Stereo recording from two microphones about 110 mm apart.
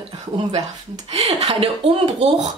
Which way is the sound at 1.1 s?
75° right (ahead or behind).